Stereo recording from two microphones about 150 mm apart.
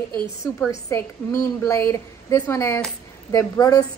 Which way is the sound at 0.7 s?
20° left (ahead or behind).